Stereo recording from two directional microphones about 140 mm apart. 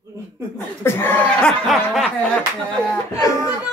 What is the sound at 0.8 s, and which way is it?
Speech, 15° left (ahead or behind).